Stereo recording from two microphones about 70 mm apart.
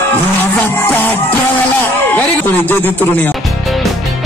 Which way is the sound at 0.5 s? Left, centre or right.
Left.